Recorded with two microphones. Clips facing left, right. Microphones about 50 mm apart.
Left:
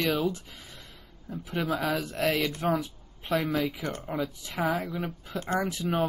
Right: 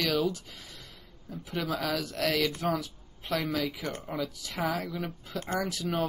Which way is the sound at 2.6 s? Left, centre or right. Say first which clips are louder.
Left 3 dB; left.